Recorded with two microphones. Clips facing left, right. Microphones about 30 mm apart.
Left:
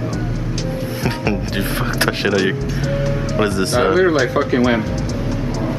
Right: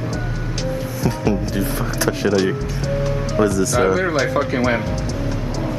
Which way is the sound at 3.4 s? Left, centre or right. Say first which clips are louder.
Even; left.